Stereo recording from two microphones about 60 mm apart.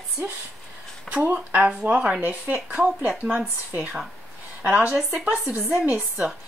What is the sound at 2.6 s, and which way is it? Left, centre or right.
Speech, centre.